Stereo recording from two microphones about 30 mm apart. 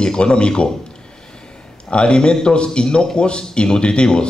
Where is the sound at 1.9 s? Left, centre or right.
Left.